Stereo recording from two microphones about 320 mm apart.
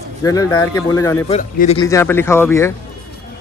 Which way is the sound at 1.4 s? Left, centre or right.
Left.